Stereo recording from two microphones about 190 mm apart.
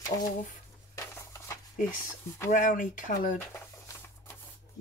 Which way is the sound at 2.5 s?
45° left (ahead or behind).